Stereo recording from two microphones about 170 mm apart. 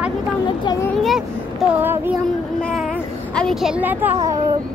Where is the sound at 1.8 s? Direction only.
10° right (ahead or behind).